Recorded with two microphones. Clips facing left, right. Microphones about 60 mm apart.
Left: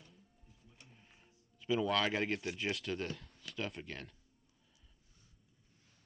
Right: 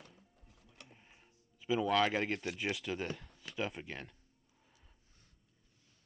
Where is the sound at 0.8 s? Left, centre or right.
Right.